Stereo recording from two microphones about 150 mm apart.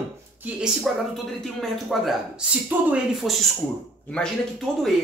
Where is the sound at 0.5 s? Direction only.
10° right (ahead or behind).